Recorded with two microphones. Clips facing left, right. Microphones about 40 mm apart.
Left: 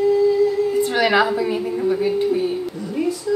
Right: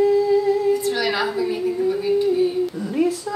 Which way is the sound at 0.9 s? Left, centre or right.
Left.